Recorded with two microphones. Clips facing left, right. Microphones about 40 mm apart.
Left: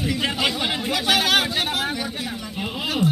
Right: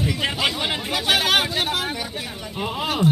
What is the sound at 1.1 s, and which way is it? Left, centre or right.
Speech, right.